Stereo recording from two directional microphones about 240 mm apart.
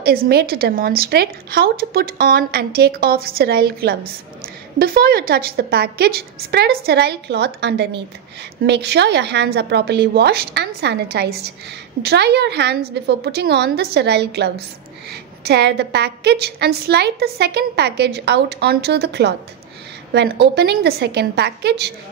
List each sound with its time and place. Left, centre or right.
0.0 s a woman's voice: right